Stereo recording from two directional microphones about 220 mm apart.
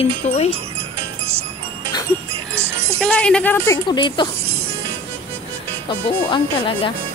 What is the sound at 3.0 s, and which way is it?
Speech, 5° left (ahead or behind).